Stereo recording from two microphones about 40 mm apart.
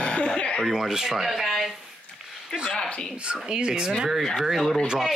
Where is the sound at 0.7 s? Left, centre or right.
Centre.